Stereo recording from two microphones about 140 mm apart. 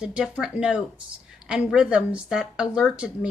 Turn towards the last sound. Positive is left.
turn(degrees=-5)  # may be behind; listen again after turning